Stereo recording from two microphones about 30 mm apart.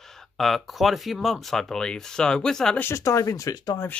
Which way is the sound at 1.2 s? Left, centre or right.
Centre.